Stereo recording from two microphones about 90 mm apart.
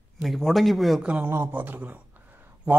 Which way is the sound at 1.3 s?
25° right (ahead or behind).